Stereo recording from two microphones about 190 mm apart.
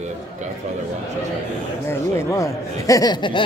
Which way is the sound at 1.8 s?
15° left (ahead or behind).